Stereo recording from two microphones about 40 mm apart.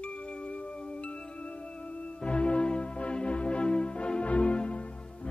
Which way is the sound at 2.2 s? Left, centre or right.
Left.